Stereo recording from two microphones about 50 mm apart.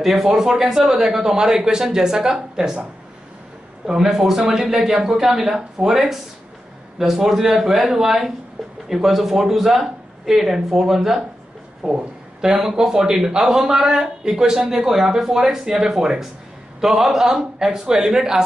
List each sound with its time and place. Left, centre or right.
0.0 s speech: centre
3.8 s speech: centre
11.8 s a sound: centre
12.4 s speech: centre